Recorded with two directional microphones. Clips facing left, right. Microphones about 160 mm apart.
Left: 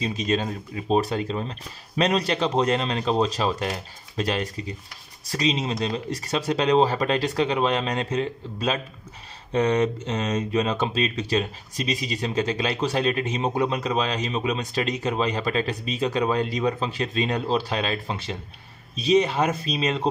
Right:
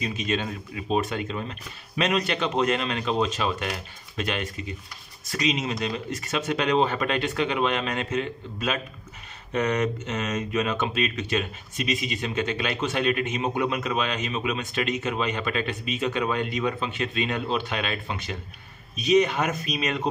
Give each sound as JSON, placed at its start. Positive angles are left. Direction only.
{"t": 0.0, "sound": "speech", "side_deg": 35}